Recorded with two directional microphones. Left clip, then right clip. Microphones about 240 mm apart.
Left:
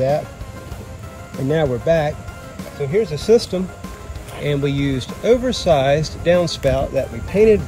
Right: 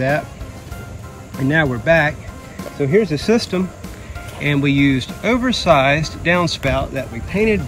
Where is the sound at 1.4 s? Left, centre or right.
Centre.